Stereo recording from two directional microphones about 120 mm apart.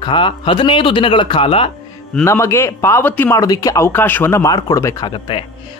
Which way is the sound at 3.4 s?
30° left (ahead or behind).